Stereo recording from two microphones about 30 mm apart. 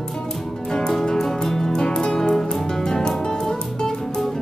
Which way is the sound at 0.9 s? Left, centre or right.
Centre.